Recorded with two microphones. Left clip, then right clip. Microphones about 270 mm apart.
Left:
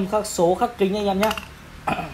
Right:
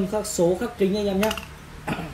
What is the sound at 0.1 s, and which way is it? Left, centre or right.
Speech, left.